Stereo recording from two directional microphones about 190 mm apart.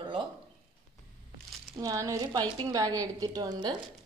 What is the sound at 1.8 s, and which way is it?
A woman's voice, 20° right (ahead or behind).